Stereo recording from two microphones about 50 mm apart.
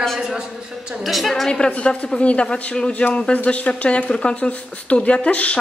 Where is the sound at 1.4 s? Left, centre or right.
Centre.